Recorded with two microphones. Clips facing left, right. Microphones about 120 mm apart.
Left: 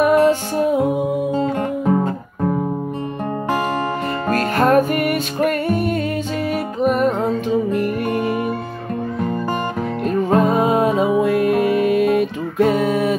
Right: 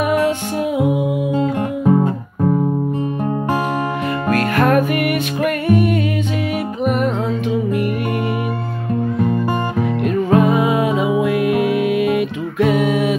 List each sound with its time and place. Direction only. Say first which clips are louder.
0.0 s music: left 3 dB; 40° left (ahead or behind)
1.3 s music: right 1 dB; 10° right (ahead or behind)
4.3 s music: even; 35° left (ahead or behind)
10.0 s music: right 1 dB; 40° left (ahead or behind)